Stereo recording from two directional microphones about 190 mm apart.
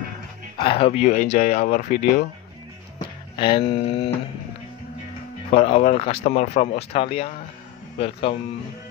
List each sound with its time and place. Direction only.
0.6 s speech: 30° left (ahead or behind)
3.0 s speech: 25° left (ahead or behind)
5.5 s speech: 30° left (ahead or behind)